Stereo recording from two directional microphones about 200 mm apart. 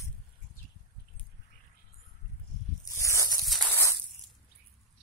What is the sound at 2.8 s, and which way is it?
Zipper, 15° left (ahead or behind).